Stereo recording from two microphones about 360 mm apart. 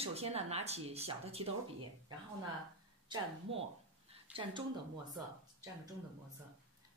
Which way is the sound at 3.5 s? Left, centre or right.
Centre.